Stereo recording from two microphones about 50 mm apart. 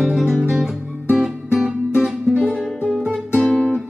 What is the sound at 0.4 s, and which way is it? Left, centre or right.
Guitar, centre.